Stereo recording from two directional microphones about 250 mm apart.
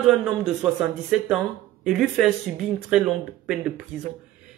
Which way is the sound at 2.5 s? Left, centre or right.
Right.